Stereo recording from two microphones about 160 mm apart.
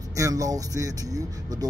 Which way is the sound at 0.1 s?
20° right (ahead or behind).